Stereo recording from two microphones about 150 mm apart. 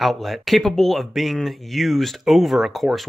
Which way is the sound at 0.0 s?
Centre (ahead or behind).